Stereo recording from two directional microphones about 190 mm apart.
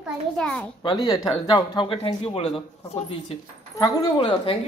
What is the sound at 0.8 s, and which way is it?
Speech, 25° left (ahead or behind).